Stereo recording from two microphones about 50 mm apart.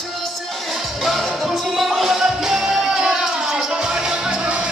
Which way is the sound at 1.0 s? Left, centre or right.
Centre.